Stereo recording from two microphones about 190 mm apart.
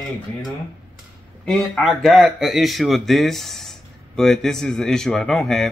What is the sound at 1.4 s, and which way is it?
Speech, centre (ahead or behind).